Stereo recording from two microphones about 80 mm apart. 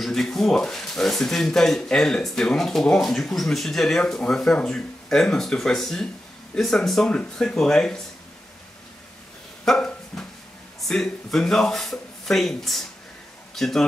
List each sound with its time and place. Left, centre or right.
0.0 s speech: centre
9.7 s dog: centre
10.8 s speech: centre